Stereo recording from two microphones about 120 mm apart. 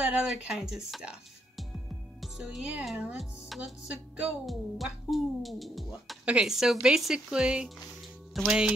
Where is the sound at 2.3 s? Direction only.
5° right (ahead or behind).